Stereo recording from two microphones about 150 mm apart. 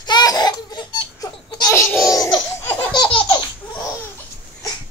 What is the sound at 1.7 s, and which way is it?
Laughter, 15° left (ahead or behind).